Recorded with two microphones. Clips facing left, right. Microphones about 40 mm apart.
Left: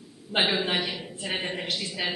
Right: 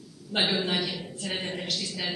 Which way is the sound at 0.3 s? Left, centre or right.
Left.